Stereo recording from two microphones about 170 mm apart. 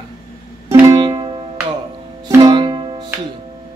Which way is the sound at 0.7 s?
20° right (ahead or behind).